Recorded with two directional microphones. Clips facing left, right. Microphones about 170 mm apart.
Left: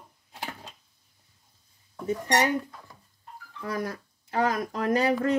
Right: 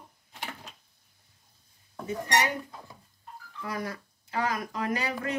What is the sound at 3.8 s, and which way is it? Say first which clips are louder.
Speech: left 2 dB; 45° left (ahead or behind).